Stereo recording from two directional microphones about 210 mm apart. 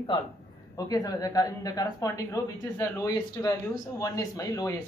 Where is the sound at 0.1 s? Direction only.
20° left (ahead or behind).